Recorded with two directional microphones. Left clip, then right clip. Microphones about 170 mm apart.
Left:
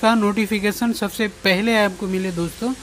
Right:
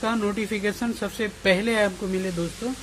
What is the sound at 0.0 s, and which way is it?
Speech, 25° left (ahead or behind).